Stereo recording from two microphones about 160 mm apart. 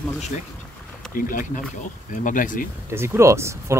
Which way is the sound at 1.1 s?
60° left (ahead or behind).